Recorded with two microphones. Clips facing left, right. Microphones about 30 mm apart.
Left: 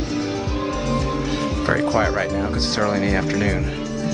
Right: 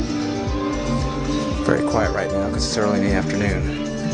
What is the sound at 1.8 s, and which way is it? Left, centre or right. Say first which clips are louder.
Speech: left 1 dB; left.